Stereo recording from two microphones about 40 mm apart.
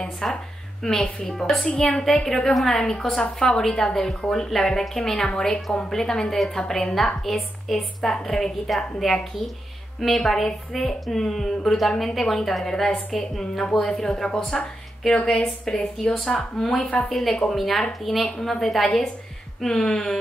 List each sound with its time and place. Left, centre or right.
0.0 s a woman's voice: centre
1.8 s a woman's voice: centre